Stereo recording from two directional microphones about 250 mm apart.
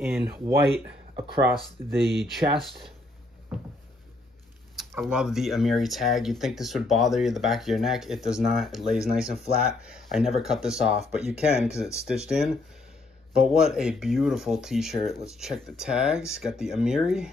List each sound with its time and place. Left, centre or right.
0.3 s speech: centre
4.7 s speech: centre